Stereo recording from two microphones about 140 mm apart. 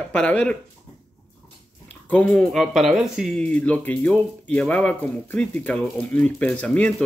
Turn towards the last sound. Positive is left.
turn(degrees=5)  # may be behind; listen again after turning